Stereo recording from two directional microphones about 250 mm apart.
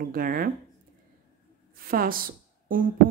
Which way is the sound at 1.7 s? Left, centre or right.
Right.